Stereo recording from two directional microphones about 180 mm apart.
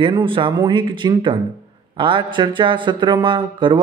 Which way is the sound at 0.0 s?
25° right (ahead or behind).